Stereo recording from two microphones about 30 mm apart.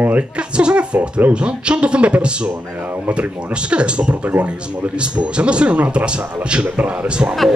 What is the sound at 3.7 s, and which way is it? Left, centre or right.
A man's voice, right.